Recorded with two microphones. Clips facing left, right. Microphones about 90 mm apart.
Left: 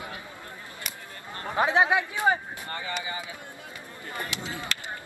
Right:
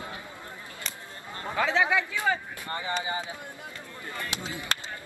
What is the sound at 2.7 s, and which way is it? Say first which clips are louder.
Speech: right 3 dB; 25° right (ahead or behind).